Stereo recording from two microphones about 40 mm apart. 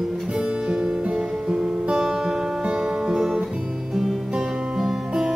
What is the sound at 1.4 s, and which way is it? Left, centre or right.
Music, right.